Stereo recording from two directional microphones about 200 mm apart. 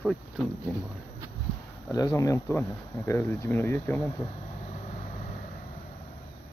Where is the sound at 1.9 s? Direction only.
15° left (ahead or behind).